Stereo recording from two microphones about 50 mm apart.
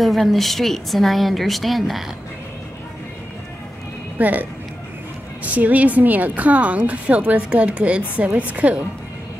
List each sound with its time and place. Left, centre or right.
0.0 s a woman's voice: centre
4.2 s a woman's voice: right